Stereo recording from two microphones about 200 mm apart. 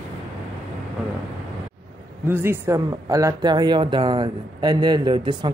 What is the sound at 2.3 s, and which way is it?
Speech, 10° right (ahead or behind).